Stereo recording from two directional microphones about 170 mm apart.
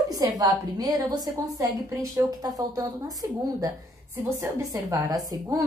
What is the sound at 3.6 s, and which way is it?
A woman's voice, 20° right (ahead or behind).